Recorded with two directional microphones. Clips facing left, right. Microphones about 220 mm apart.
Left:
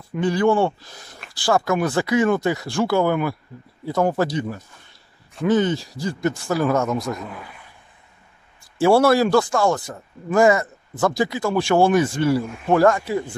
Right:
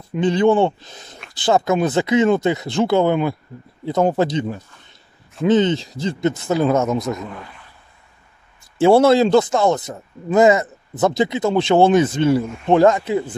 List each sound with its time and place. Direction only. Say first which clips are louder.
0.1 s speech: right 3 dB; 20° right (ahead or behind)
8.7 s speech: right 3 dB; 20° right (ahead or behind)